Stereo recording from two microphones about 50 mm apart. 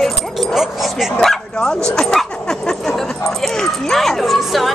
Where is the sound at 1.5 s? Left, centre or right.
Centre.